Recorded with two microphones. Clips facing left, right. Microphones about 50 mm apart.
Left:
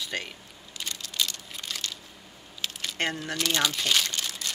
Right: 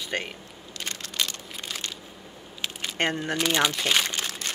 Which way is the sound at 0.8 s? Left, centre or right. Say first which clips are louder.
Right 1 dB; right.